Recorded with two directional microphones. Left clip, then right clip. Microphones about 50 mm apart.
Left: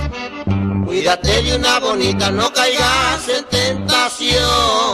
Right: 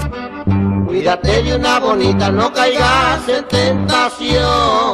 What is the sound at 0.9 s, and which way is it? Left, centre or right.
Music, centre.